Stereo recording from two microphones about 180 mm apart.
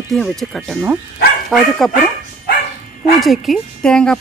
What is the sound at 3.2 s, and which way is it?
Speech, centre (ahead or behind).